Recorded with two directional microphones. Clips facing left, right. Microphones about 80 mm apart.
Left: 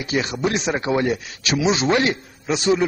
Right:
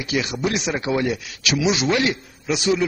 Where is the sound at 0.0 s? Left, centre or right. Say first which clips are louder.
Left 1 dB; left.